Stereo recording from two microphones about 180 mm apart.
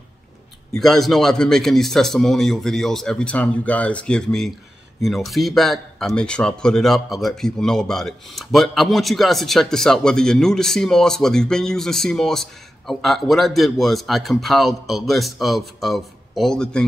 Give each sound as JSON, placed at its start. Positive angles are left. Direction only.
{"t": 0.7, "sound": "speech", "side_deg": 0}